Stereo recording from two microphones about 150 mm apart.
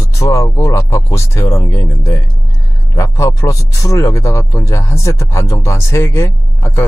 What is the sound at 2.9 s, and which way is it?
Speech, 20° left (ahead or behind).